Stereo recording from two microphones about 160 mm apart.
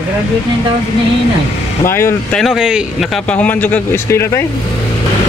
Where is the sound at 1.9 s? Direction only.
15° left (ahead or behind).